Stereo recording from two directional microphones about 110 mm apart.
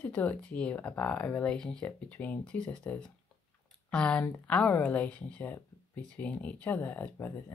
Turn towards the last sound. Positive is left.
turn(degrees=15)  # may be behind; listen again after turning